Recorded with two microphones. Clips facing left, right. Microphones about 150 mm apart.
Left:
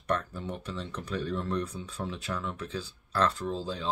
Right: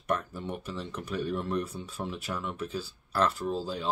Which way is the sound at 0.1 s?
10° right (ahead or behind).